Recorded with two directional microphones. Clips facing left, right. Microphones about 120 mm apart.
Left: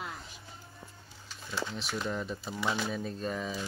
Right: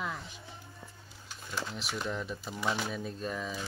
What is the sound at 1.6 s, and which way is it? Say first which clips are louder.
Speech: left 2 dB; 5° right (ahead or behind).